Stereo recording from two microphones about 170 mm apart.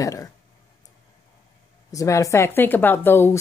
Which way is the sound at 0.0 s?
20° left (ahead or behind).